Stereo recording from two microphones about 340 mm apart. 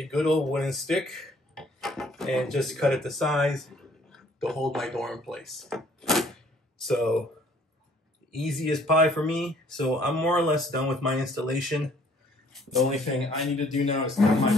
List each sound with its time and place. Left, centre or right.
0.0 s speech: centre
8.5 s speech: centre